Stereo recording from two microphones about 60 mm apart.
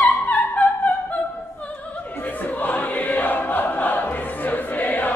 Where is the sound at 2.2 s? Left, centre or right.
Left.